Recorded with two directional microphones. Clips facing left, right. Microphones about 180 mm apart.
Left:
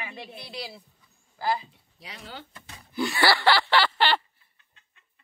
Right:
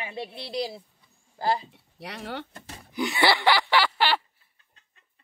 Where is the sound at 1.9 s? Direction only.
65° right (ahead or behind).